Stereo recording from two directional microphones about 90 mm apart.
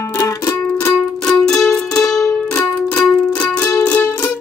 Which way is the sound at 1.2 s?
5° left (ahead or behind).